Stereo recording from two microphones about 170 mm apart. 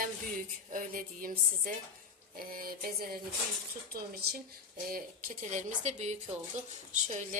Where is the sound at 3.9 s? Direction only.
65° right (ahead or behind).